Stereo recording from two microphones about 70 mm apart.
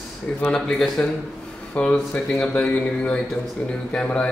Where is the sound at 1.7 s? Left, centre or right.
Centre.